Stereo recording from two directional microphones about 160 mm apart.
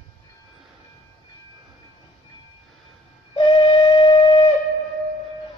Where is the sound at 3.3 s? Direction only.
35° left (ahead or behind).